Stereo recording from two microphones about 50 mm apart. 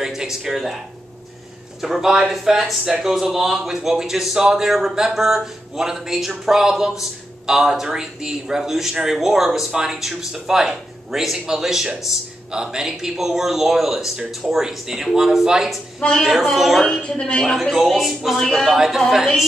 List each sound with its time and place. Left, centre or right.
0.0 s speech: centre
1.8 s a man's voice: centre
16.8 s a woman's voice: centre
17.4 s a man's voice: centre
18.4 s a woman's voice: centre
18.7 s a man's voice: centre